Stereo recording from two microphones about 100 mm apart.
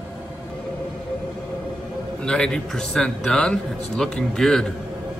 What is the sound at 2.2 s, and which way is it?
A man's voice, 10° left (ahead or behind).